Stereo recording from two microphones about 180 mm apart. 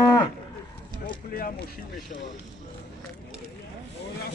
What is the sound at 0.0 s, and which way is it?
Cattle, 20° left (ahead or behind).